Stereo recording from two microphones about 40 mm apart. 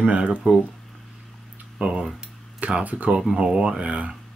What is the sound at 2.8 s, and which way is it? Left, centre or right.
Speech, right.